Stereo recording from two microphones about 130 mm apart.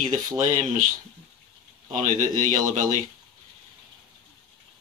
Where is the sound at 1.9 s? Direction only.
85° right.